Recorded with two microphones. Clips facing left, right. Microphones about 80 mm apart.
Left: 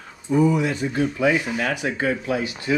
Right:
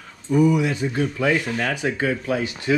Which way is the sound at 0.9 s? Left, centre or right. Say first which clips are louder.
Left 3 dB; centre.